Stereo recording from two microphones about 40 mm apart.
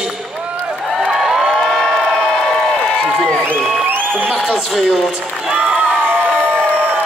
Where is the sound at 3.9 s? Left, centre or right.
Right.